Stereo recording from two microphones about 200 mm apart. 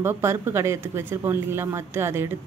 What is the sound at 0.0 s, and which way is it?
A woman's voice, 10° right (ahead or behind).